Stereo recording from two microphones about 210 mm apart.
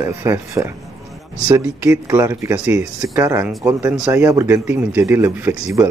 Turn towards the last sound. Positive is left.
turn(degrees=-10)  # may be behind; listen again after turning